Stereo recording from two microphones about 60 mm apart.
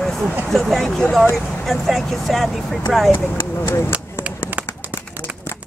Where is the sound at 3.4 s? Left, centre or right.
Left.